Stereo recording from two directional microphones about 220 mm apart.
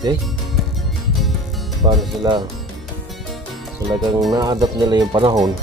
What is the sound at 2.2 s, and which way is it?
Speech, 15° right (ahead or behind).